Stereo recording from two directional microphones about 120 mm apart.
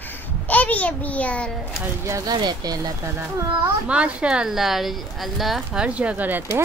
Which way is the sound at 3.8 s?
10° right (ahead or behind).